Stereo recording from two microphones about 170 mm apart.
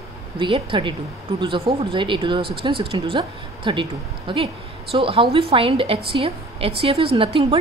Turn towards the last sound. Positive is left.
turn(degrees=-35)  # may be behind; listen again after turning